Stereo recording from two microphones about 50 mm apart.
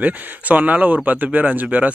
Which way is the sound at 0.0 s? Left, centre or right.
Right.